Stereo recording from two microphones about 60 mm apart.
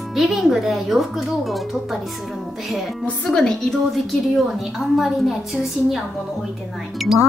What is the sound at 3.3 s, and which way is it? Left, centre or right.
A woman's voice, centre.